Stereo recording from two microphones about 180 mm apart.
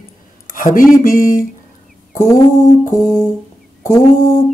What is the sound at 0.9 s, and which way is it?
Music, 50° left (ahead or behind).